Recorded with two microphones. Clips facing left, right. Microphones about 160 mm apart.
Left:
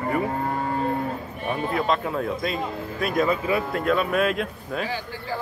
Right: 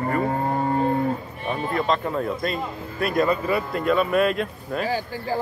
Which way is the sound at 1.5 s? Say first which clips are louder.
Right 1 dB; 5° left (ahead or behind).